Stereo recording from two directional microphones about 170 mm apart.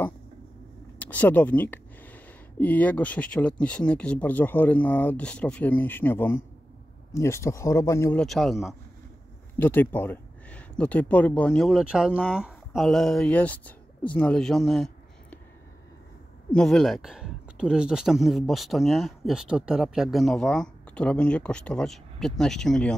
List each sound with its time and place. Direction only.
0.9 s speech: 10° left (ahead or behind)
8.2 s speech: centre (ahead or behind)
9.6 s speech: 10° left (ahead or behind)
16.5 s speech: centre (ahead or behind)